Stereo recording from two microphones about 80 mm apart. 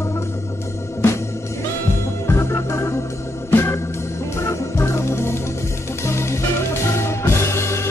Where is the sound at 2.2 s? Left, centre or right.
Left.